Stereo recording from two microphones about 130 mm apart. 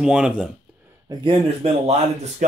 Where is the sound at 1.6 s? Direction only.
50° right (ahead or behind).